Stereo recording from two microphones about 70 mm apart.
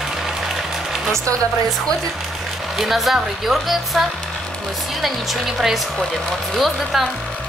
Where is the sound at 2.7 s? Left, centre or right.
Centre.